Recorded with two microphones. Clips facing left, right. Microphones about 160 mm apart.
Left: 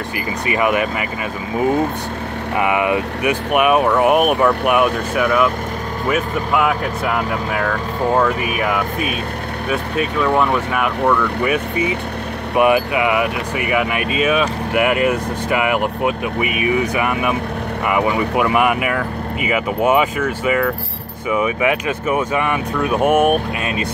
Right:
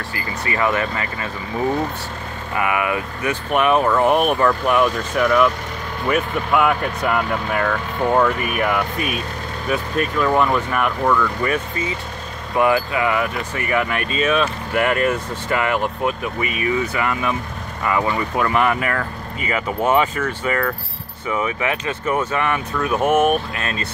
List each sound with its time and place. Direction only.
0.5 s speech: 15° left (ahead or behind)
2.5 s speech: 20° left (ahead or behind)